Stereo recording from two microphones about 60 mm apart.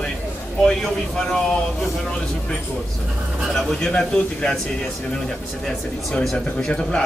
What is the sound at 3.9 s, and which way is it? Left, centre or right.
Speech, centre.